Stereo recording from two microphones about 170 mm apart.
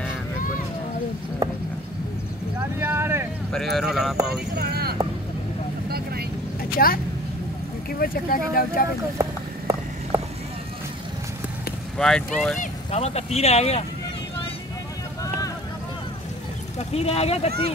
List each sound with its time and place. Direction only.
2.8 s vehicle: 15° right (ahead or behind)
3.5 s speech: centre (ahead or behind)
4.6 s vehicle: 65° right (ahead or behind)
6.8 s speech: 55° left (ahead or behind)
9.2 s a sound: 20° right (ahead or behind)
12.0 s speech: 5° left (ahead or behind)
12.5 s speech: 40° left (ahead or behind)
16.7 s speech: 35° left (ahead or behind)